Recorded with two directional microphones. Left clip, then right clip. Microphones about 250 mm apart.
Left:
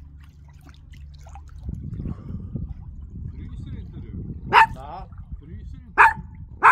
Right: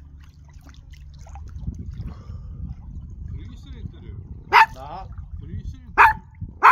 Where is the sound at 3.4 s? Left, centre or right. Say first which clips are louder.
Even; right.